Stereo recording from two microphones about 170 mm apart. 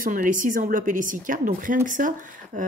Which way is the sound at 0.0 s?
50° right (ahead or behind).